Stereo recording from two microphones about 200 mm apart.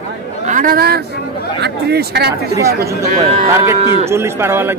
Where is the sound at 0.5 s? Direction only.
45° right (ahead or behind).